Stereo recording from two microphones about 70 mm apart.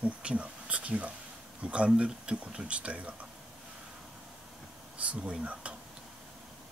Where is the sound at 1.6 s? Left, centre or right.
Centre.